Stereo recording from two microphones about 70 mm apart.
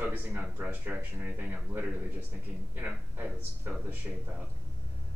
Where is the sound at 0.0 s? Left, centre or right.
Right.